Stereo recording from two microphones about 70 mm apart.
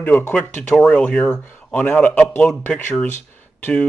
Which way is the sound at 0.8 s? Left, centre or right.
Centre.